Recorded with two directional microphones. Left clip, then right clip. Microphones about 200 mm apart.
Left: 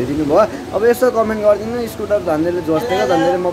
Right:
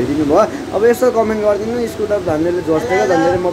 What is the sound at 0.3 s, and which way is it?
A man's voice, 5° left (ahead or behind).